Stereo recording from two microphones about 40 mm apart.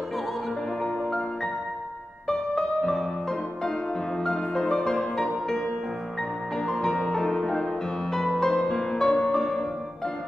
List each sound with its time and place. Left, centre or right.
2.2 s music: centre
6.6 s music: centre